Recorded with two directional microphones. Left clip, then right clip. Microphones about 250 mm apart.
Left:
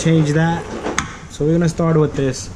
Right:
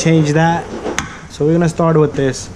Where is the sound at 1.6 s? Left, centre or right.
Right.